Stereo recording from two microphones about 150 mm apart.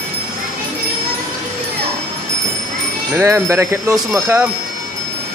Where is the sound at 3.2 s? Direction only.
20° right (ahead or behind).